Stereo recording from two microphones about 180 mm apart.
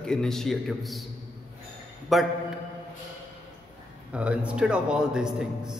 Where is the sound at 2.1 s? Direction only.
Centre (ahead or behind).